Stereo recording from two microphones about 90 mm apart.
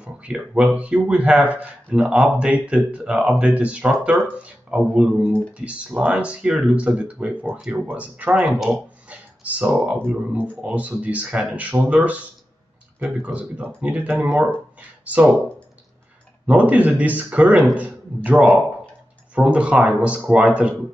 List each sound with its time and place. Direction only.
0.0 s speech: 10° right (ahead or behind)
16.4 s a man's voice: 15° right (ahead or behind)